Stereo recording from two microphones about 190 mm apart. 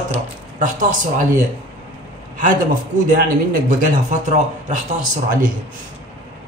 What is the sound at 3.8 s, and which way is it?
Speech, 40° right (ahead or behind).